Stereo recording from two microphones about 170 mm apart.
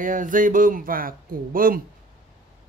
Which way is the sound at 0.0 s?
50° right (ahead or behind).